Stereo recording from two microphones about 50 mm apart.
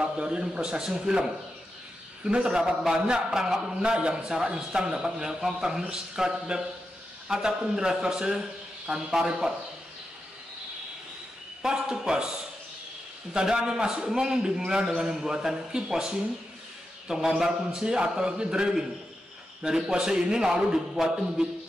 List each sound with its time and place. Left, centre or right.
0.0 s a man's voice: centre
11.6 s a man's voice: centre
13.3 s a man's voice: centre
17.3 s a man's voice: centre